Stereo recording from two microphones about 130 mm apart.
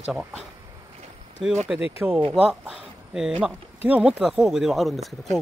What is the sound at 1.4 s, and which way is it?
Speech, centre (ahead or behind).